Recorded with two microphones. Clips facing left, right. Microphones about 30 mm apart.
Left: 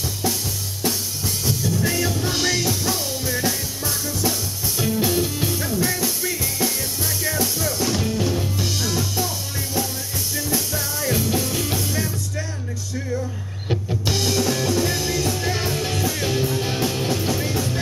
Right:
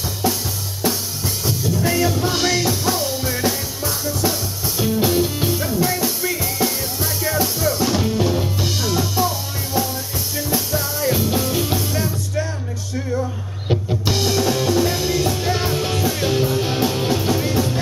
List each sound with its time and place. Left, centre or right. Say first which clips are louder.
0.2 s drum: right 4 dB; centre
0.8 s drum kit: right 3 dB; centre
1.4 s music: right 2 dB; centre
13.7 s music: right 4 dB; right
14.0 s music: right 2 dB; centre